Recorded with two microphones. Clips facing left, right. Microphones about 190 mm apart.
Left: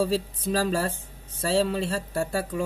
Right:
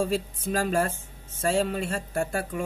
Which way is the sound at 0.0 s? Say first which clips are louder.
Left 2 dB; 35° left (ahead or behind).